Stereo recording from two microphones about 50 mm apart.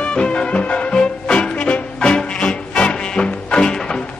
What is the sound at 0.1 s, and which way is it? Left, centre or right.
Music, left.